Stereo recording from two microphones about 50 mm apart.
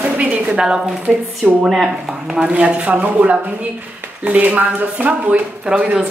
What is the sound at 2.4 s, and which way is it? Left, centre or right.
Speech, right.